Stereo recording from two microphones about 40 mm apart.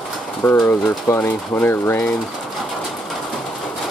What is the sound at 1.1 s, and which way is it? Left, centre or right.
Speech, left.